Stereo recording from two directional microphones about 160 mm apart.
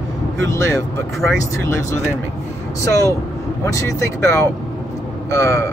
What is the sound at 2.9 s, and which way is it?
Speech, 20° left (ahead or behind).